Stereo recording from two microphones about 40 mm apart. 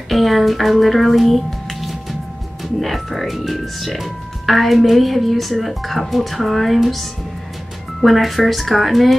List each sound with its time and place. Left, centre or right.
0.1 s speech: centre